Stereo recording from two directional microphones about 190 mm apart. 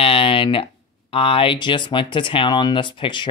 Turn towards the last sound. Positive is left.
turn(degrees=25)  # may be behind; listen again after turning